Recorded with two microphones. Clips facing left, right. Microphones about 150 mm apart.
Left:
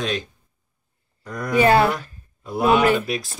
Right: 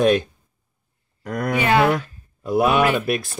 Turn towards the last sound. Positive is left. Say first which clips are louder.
# even
turn(degrees=-60)  # may be behind; listen again after turning